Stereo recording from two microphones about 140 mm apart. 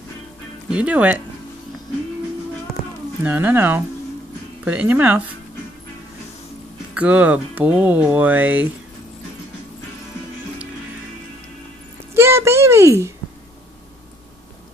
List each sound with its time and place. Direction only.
0.7 s speech: 10° right (ahead or behind)
3.3 s speech: 15° right (ahead or behind)
6.9 s speech: 10° right (ahead or behind)
12.1 s a sound: 20° right (ahead or behind)